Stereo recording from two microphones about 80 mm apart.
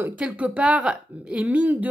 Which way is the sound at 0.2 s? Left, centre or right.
Centre.